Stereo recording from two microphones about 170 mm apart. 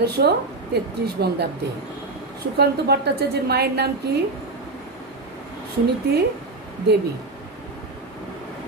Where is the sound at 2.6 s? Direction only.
70° right (ahead or behind).